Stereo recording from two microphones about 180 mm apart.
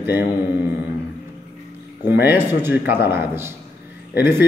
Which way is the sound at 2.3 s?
10° right (ahead or behind).